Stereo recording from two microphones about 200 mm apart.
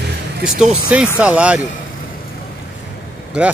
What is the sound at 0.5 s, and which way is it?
Speech, 5° right (ahead or behind).